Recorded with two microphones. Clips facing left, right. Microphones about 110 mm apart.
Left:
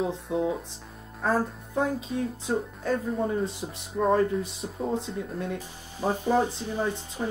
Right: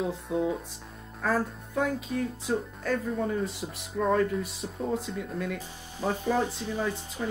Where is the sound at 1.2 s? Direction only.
30° left (ahead or behind).